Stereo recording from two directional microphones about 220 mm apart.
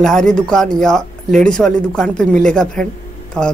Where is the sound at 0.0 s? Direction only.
5° left (ahead or behind).